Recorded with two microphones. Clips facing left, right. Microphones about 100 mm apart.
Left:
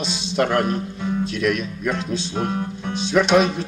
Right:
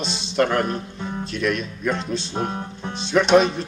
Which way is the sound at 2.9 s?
Centre (ahead or behind).